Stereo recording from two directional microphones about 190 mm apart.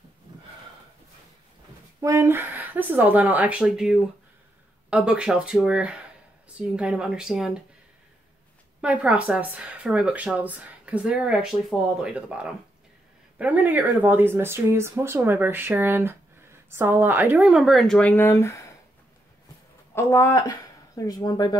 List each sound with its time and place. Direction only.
2.0 s speech: 15° right (ahead or behind)
8.8 s speech: 5° right (ahead or behind); by 18.7 s 15° left (ahead or behind)
19.9 s speech: 15° left (ahead or behind)